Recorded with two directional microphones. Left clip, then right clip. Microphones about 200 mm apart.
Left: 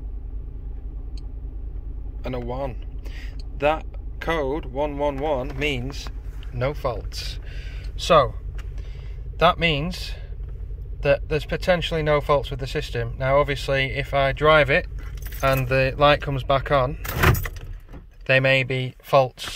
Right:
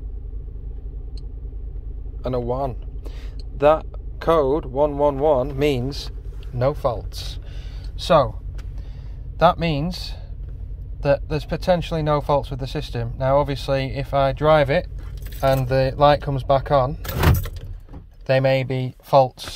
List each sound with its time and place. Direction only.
2.2 s a man's voice: 15° right (ahead or behind); by 6.1 s 30° right (ahead or behind)
6.5 s speech: 15° right (ahead or behind)
9.4 s speech: 10° right (ahead or behind)
18.2 s speech: 5° right (ahead or behind)